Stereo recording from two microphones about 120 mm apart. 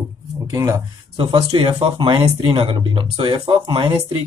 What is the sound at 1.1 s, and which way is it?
Speech, 45° right (ahead or behind).